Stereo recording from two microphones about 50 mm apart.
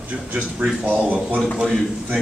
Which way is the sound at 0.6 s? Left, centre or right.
Right.